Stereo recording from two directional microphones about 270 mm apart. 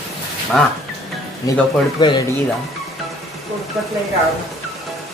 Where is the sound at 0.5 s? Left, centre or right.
Centre.